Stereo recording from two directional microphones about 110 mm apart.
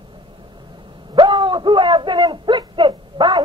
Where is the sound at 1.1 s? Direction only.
45° right (ahead or behind).